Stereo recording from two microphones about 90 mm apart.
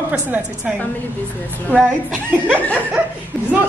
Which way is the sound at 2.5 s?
15° left (ahead or behind).